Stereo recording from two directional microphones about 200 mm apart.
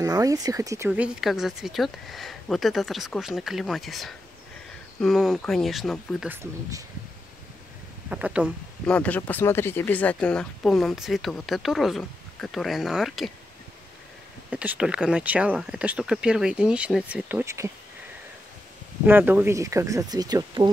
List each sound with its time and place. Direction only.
0.0 s speech: 15° right (ahead or behind)
8.1 s speech: 5° right (ahead or behind)
8.8 s speech: 5° left (ahead or behind)
14.5 s speech: 5° right (ahead or behind)
19.0 s speech: 10° right (ahead or behind)